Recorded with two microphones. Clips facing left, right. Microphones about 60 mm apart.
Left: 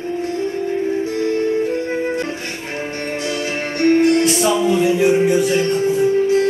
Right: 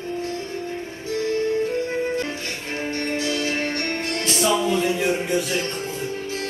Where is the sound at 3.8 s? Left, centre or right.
Centre.